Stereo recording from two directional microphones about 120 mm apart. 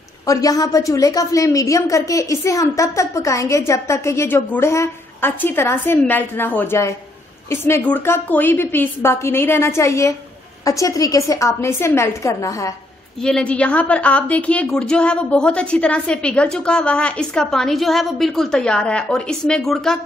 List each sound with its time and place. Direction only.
0.3 s a woman's voice: 30° left (ahead or behind)
13.2 s a woman's voice: 5° left (ahead or behind)